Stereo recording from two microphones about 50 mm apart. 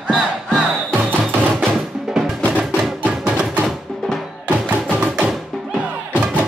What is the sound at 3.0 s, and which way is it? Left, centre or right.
Music, right.